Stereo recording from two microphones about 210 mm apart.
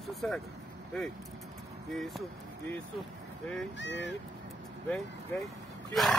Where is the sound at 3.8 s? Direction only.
55° left (ahead or behind).